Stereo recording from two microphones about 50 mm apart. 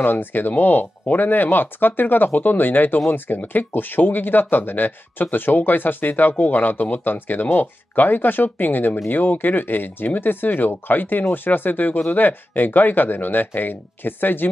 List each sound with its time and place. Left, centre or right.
0.0 s speech: left